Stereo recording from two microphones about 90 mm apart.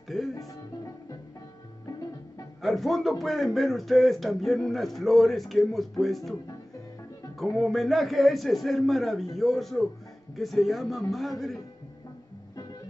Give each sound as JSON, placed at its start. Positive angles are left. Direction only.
{"t": 0.3, "sound": "music", "side_deg": 40}
{"t": 2.6, "sound": "a man's voice", "side_deg": 0}
{"t": 7.5, "sound": "a man's voice", "side_deg": 0}